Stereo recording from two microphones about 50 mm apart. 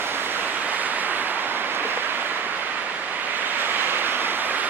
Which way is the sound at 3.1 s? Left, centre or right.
Right.